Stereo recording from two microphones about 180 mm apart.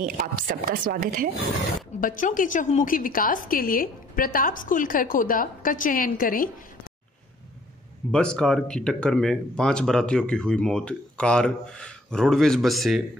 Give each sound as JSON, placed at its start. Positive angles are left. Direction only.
{"t": 0.0, "sound": "speech", "side_deg": -50}
{"t": 2.0, "sound": "a woman's voice", "side_deg": 50}
{"t": 8.1, "sound": "speech", "side_deg": 5}